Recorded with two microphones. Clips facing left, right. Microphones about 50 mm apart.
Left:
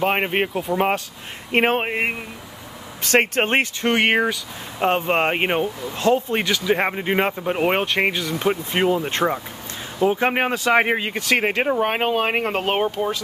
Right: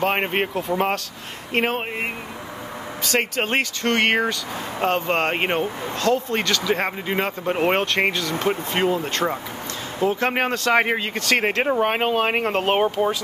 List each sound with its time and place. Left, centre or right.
0.0 s speech: centre
1.5 s speech: left
3.8 s speech: centre
5.9 s speech: left
7.4 s speech: centre